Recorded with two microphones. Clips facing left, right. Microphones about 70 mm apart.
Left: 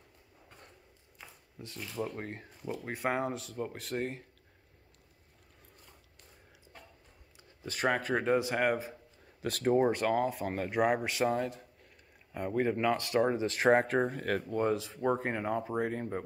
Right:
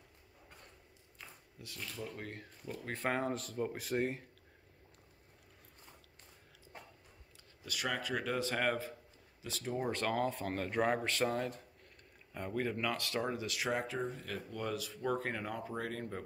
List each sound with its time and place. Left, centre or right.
1.2 s a sound: centre
1.6 s speech: left
2.8 s speech: centre
7.6 s speech: left
8.4 s speech: centre
9.4 s speech: left
9.8 s speech: centre
12.3 s speech: centre; by 14.4 s left
14.5 s speech: left